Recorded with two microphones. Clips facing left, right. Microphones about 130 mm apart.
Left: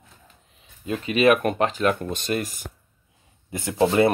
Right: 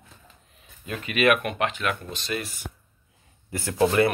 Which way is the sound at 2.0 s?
50° left (ahead or behind).